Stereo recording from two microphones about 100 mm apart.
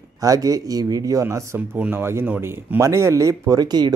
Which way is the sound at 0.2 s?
35° right (ahead or behind).